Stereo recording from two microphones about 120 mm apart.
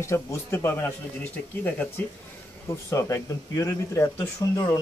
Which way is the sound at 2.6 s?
25° left (ahead or behind).